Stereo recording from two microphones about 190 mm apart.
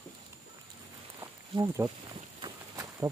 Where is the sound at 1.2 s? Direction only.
15° right (ahead or behind).